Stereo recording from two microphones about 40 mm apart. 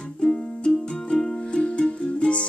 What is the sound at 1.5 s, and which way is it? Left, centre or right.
Music, left.